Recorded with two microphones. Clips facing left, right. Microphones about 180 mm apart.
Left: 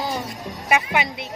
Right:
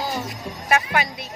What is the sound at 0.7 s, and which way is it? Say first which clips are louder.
Speech: even; 15° left (ahead or behind).